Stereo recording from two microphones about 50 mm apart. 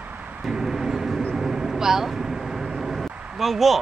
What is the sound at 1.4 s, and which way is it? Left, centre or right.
Vehicle, centre.